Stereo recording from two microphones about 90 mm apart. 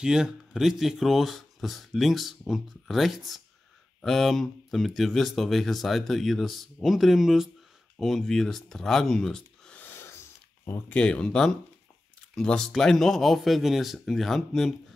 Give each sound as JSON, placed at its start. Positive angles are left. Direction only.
{"t": 0.0, "sound": "speech", "side_deg": -5}
{"t": 9.8, "sound": "a sound", "side_deg": 25}
{"t": 10.9, "sound": "speech", "side_deg": 10}